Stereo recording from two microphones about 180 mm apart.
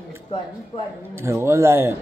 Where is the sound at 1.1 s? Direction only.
15° right (ahead or behind).